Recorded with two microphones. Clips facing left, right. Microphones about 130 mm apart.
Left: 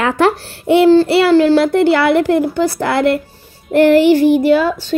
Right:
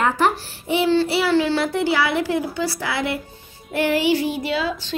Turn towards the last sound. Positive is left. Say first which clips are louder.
# left 12 dB
turn(degrees=50)  # may be behind; listen again after turning